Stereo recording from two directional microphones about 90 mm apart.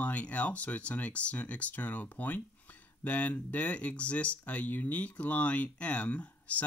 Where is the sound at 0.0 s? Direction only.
15° left (ahead or behind).